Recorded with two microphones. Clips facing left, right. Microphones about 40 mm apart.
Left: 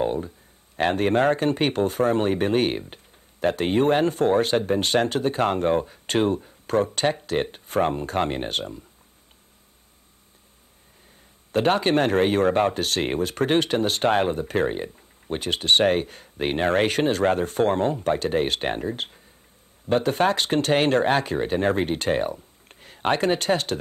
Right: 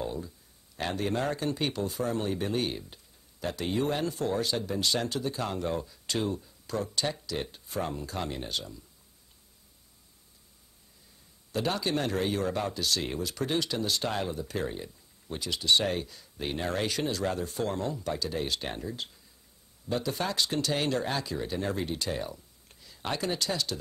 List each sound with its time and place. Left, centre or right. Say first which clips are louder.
0.0 s a sound: left 10 dB; left
0.7 s speech: left 10 dB; left
11.5 s speech: left 10 dB; left